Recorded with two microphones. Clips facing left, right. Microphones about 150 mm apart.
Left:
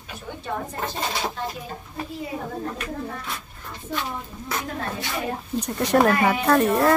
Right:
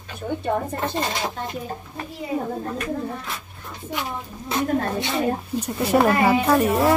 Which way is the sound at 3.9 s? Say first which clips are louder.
Even; 20° right (ahead or behind).